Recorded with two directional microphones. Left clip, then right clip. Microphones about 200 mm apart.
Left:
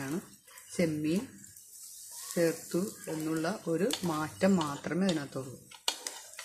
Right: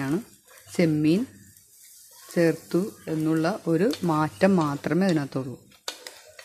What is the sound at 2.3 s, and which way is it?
Speech, 40° right (ahead or behind).